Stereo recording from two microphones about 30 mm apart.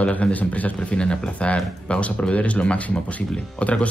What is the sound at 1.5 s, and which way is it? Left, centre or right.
Speech, left.